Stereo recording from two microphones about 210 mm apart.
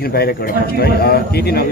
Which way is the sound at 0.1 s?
50° left (ahead or behind).